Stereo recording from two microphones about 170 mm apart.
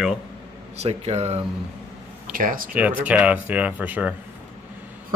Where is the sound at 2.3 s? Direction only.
55° right (ahead or behind).